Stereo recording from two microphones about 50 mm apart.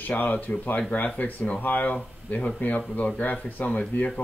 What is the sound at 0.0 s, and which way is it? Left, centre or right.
Speech, left.